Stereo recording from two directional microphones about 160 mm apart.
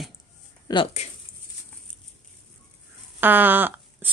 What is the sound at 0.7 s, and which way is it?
Speech, 30° left (ahead or behind).